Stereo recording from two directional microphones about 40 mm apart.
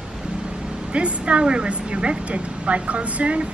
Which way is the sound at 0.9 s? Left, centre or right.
Right.